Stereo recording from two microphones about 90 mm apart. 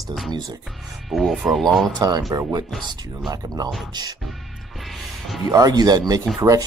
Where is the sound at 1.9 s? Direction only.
50° right (ahead or behind).